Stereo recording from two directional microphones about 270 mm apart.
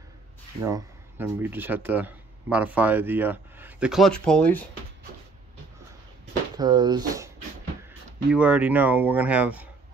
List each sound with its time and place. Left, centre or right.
0.6 s speech: centre
6.5 s speech: centre
8.3 s speech: centre